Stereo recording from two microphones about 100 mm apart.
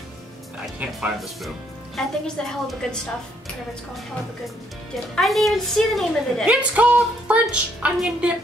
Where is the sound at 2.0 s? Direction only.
5° left (ahead or behind).